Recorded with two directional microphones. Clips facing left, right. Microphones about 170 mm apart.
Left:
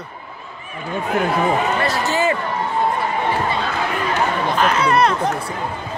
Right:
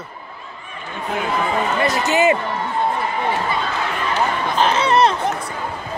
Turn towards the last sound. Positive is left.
turn(degrees=-30)  # may be behind; listen again after turning